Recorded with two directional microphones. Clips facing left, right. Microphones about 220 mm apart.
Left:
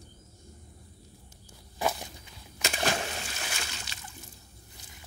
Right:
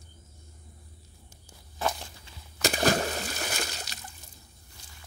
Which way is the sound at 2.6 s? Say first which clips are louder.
Right 6 dB; 35° right (ahead or behind).